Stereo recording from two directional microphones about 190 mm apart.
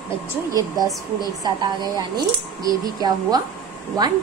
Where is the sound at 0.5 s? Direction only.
20° right (ahead or behind).